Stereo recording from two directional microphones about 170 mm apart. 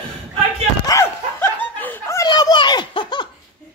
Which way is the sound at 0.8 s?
15° left (ahead or behind).